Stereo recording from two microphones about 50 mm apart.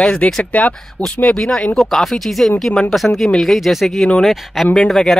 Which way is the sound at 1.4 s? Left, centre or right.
Centre.